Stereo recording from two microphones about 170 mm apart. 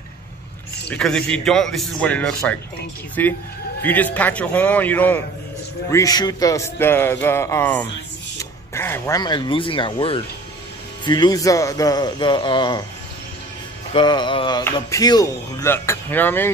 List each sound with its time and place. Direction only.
0.8 s a man's voice: 5° left (ahead or behind); by 12.8 s 25° left (ahead or behind)
13.9 s speech: 25° left (ahead or behind)